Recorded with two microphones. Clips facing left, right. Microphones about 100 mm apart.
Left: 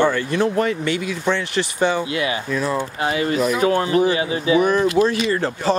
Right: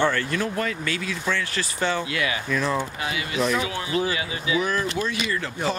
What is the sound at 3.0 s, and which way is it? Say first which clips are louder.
Speech: left 6 dB; 40° left (ahead or behind).